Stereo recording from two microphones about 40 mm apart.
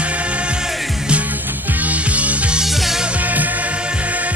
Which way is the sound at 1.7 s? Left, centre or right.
Right.